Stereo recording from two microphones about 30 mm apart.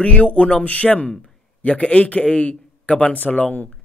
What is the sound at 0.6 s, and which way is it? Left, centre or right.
Speech, left.